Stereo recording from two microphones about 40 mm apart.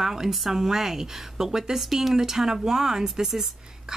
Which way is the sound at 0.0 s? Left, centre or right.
Centre.